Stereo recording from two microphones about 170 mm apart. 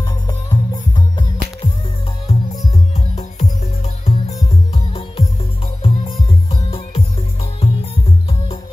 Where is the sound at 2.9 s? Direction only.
40° left (ahead or behind).